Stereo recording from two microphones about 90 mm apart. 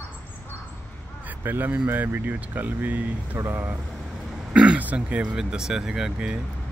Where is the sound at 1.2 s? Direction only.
20° right (ahead or behind).